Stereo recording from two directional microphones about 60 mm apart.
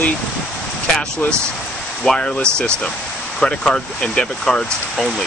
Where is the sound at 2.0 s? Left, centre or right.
Centre.